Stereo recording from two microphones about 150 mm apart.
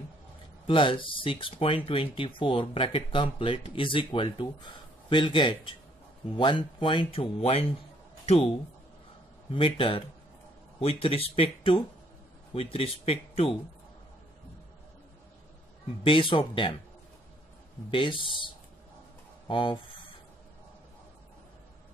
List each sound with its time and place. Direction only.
0.7 s speech: 35° left (ahead or behind)
9.5 s speech: 35° left (ahead or behind)
16.0 s speech: 35° left (ahead or behind)
17.9 s speech: 35° left (ahead or behind)
19.5 s speech: 30° left (ahead or behind)